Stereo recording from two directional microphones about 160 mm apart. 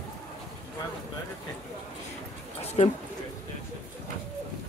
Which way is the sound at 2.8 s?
40° left (ahead or behind).